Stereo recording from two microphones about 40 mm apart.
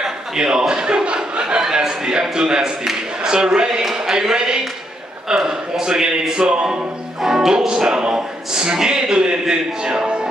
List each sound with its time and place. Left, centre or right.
0.0 s a man's voice: centre